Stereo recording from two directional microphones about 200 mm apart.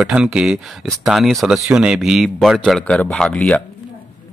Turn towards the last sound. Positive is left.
turn(degrees=5)  # may be behind; listen again after turning